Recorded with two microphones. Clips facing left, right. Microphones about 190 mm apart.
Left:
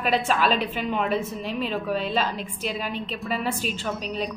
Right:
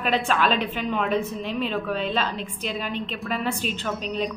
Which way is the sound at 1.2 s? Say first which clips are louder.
Right 1 dB; 40° left (ahead or behind).